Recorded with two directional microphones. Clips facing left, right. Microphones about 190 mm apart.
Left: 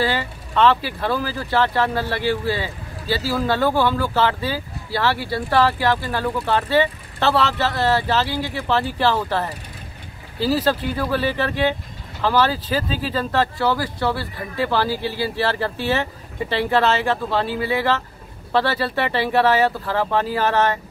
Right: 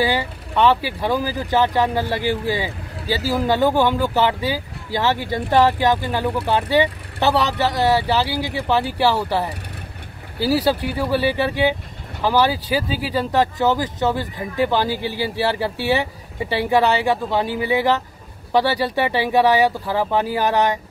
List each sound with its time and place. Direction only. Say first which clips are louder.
0.0 s speech: right 2 dB; 15° right (ahead or behind)